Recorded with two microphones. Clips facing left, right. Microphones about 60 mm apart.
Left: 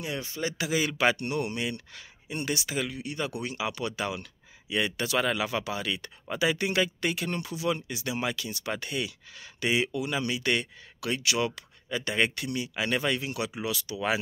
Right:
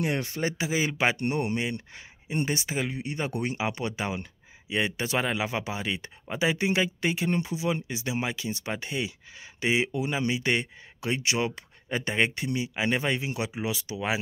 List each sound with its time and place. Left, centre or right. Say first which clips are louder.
0.0 s speech: right 4 dB; right
0.6 s speech: left 1 dB; right